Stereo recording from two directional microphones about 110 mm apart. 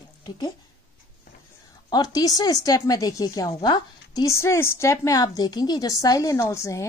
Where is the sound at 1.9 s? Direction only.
35° left (ahead or behind).